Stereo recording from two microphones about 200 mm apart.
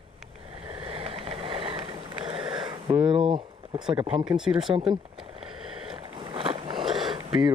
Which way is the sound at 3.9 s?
25° right (ahead or behind).